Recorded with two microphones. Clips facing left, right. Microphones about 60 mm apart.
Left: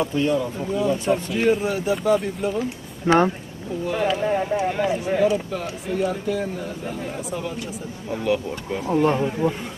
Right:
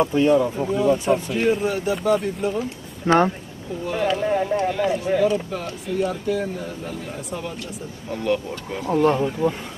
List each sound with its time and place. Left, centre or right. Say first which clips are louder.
0.1 s speech: right 4 dB; right
0.7 s speech: left 1 dB; centre
3.1 s speech: even; centre
3.8 s speech: even; centre